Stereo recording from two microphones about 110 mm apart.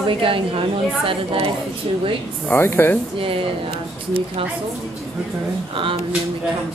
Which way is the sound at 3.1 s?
55° right (ahead or behind).